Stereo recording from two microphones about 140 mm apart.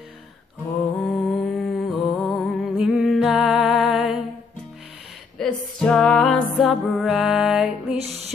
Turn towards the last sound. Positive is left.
turn(degrees=-5)  # may be behind; listen again after turning